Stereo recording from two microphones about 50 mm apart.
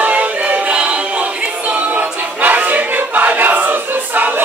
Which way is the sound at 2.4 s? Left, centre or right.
Right.